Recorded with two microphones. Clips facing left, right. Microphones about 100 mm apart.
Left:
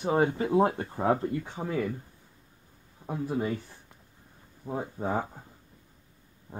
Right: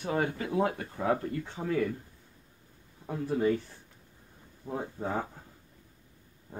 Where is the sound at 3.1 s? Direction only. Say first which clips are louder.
Right 2 dB; 15° left (ahead or behind).